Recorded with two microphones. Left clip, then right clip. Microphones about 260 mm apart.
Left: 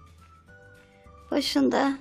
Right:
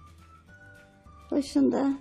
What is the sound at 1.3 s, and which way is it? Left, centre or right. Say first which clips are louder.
Speech: left 2 dB; left.